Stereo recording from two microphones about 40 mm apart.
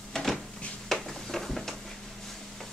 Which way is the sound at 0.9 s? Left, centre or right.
Centre.